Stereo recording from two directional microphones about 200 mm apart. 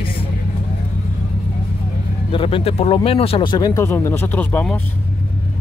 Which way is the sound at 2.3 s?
25° left (ahead or behind).